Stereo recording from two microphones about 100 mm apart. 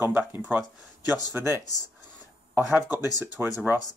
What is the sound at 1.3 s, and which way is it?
Speech, 25° right (ahead or behind).